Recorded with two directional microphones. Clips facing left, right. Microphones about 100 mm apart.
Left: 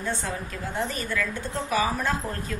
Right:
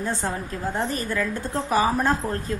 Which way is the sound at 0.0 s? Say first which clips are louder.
Right 3 dB; 35° right (ahead or behind).